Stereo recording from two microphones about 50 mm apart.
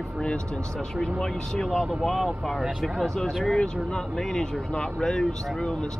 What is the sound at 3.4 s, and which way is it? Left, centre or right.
Speech, centre.